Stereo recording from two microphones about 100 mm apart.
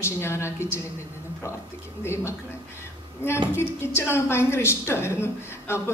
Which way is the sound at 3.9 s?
25° left (ahead or behind).